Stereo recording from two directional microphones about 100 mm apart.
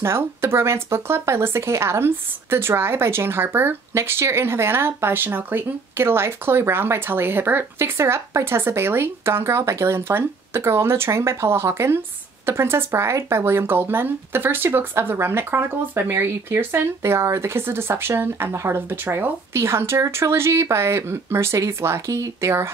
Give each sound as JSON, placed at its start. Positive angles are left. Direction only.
{"t": 0.0, "sound": "speech", "side_deg": -25}